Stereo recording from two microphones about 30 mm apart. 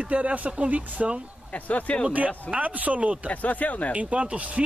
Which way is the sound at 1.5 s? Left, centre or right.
Left.